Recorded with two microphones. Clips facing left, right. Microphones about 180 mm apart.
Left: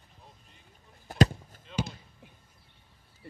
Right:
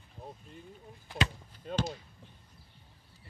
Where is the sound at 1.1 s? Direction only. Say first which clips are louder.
Left 9 dB; 45° left (ahead or behind).